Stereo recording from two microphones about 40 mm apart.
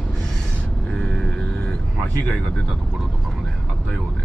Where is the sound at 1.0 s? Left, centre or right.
Centre.